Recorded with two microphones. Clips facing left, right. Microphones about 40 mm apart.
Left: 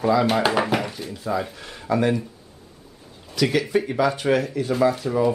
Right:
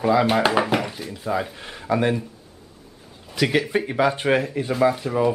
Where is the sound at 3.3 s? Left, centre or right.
Right.